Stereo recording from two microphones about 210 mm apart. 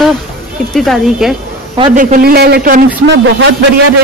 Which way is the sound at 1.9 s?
40° right (ahead or behind).